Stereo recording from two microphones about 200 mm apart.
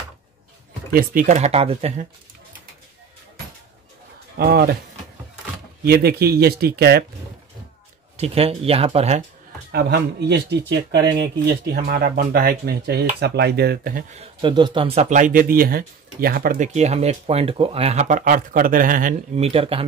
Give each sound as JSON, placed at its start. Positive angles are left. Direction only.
{"t": 0.9, "sound": "speech", "side_deg": -40}
{"t": 4.4, "sound": "speech", "side_deg": -50}
{"t": 5.9, "sound": "speech", "side_deg": -50}
{"t": 8.2, "sound": "speech", "side_deg": -30}
{"t": 9.7, "sound": "speech", "side_deg": -55}
{"t": 14.1, "sound": "speech", "side_deg": -25}
{"t": 19.3, "sound": "speech", "side_deg": -30}